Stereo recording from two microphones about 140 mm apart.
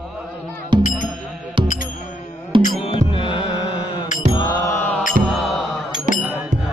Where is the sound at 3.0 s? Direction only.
40° left (ahead or behind).